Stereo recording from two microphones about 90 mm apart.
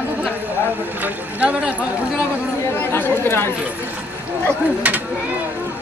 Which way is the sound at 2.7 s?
20° left (ahead or behind).